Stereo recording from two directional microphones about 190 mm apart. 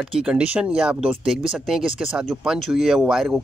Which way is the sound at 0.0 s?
5° right (ahead or behind).